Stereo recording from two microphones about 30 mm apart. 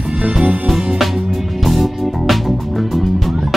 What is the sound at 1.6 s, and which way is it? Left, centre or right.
Music, centre.